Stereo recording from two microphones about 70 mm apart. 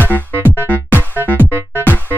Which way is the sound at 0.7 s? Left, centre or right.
Left.